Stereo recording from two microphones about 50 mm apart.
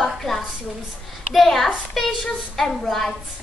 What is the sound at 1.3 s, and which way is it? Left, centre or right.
A woman's voice, centre.